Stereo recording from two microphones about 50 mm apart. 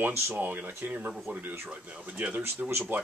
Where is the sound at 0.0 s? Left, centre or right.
Right.